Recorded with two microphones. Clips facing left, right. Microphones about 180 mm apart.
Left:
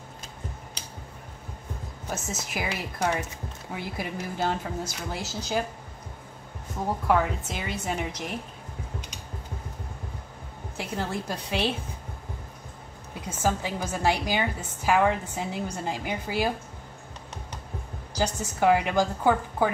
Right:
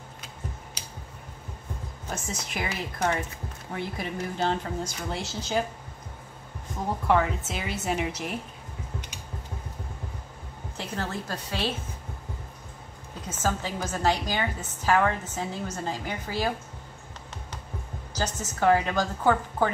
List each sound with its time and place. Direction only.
2.5 s a woman's voice: 10° left (ahead or behind)
7.1 s a woman's voice: centre (ahead or behind)
10.8 s a woman's voice: 15° left (ahead or behind)
13.3 s a woman's voice: 10° left (ahead or behind)
18.1 s a woman's voice: 15° left (ahead or behind)